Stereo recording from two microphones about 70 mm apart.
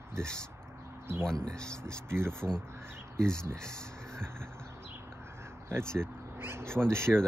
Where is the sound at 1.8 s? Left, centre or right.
Right.